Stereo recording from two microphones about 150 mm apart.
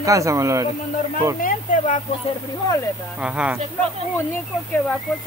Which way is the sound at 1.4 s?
65° left (ahead or behind).